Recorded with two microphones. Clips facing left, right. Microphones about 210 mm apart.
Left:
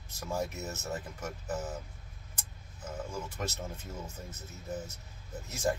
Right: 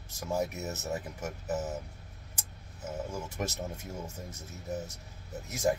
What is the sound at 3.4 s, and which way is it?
Speech, 15° right (ahead or behind).